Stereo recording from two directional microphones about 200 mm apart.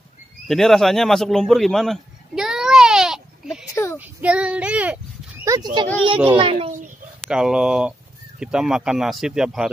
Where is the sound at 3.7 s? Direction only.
15° left (ahead or behind).